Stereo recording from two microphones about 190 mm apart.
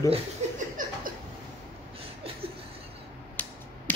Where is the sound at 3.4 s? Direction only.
10° left (ahead or behind).